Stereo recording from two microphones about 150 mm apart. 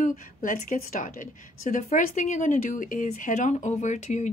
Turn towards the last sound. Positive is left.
turn(degrees=55)  # may be behind; listen again after turning